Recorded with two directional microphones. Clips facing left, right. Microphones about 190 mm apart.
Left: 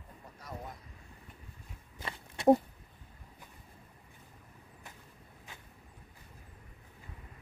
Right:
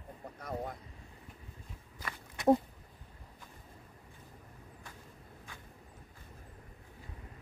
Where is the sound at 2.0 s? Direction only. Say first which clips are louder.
Left 3 dB; 25° left (ahead or behind).